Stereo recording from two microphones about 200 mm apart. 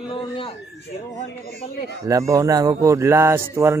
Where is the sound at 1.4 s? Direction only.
45° left (ahead or behind).